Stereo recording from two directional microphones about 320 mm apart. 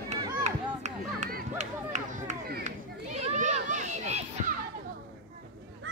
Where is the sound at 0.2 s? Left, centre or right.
Right.